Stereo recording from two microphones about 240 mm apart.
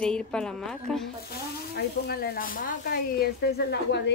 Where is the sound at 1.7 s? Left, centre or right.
Left.